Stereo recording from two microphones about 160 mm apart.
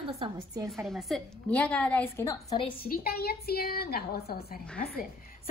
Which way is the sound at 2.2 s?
20° left (ahead or behind).